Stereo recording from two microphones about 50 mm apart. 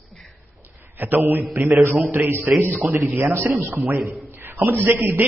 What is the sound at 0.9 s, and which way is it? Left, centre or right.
A man's voice, right.